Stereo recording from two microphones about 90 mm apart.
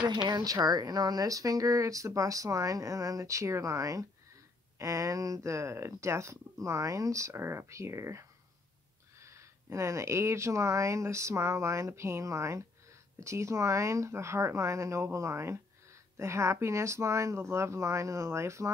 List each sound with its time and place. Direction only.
0.0 s speech: 55° right (ahead or behind); by 18.7 s 30° right (ahead or behind)